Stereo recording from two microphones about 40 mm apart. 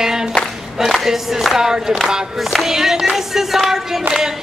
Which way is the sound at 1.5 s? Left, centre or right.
Centre.